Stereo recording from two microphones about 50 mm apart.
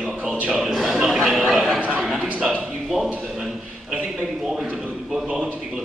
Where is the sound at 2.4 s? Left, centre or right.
Centre.